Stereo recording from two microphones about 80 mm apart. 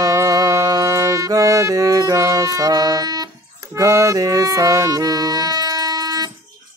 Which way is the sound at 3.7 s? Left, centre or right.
Right.